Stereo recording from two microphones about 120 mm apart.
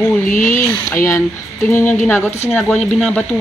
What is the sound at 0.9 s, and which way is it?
Speech, 25° left (ahead or behind).